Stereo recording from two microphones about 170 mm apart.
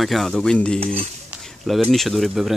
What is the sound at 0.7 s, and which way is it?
Cutlery, 35° right (ahead or behind).